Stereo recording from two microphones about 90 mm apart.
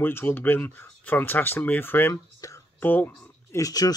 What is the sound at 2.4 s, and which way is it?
Whispering, 35° left (ahead or behind).